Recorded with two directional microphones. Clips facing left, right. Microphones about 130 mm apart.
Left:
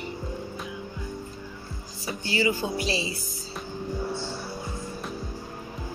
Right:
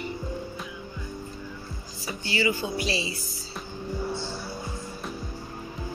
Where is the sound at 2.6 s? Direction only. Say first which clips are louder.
Left 1 dB; 40° left (ahead or behind).